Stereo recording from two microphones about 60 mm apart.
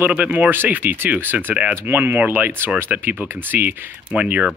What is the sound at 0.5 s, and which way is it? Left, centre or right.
Speech, right.